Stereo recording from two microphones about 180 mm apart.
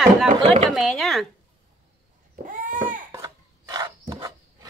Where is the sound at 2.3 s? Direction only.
50° right (ahead or behind).